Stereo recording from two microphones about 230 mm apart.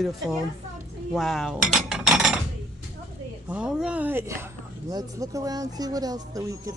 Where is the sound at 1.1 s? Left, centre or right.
Centre.